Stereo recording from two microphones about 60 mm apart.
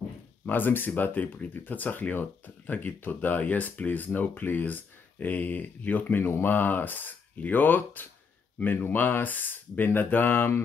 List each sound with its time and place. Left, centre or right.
0.5 s speech: left